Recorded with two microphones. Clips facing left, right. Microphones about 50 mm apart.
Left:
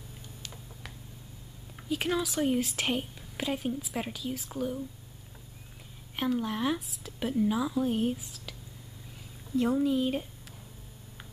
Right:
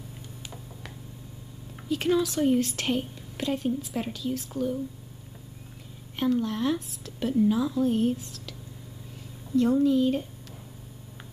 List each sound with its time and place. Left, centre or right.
1.9 s a woman's voice: centre
6.1 s a woman's voice: centre
9.6 s a woman's voice: centre